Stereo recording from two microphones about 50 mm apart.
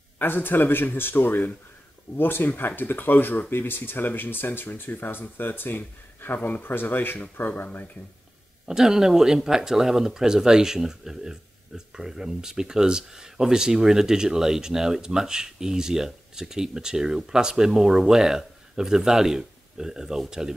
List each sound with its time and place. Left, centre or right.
0.2 s speech: left
8.6 s speech: centre